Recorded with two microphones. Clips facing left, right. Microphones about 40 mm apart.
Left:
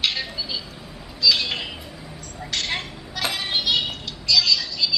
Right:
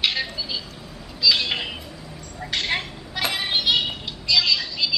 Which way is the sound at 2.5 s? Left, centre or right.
Centre.